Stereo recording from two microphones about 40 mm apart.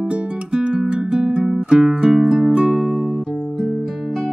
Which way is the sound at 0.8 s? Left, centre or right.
Centre.